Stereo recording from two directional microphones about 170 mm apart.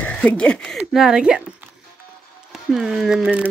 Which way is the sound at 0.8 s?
5° right (ahead or behind).